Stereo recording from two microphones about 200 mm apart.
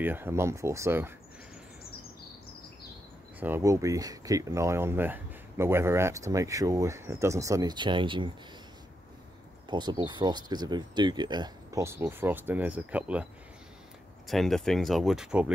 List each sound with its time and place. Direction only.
0.0 s speech: 10° right (ahead or behind)
3.3 s speech: 10° right (ahead or behind)
9.7 s speech: 20° right (ahead or behind); by 15.5 s 5° right (ahead or behind)